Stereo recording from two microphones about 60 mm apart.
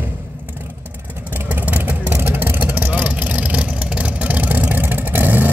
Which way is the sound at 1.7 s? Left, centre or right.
Right.